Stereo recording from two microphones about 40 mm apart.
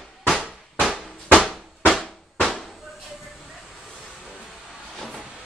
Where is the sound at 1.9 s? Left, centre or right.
Centre.